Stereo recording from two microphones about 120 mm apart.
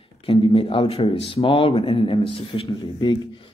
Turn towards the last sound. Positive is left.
turn(degrees=40)  # may be behind; listen again after turning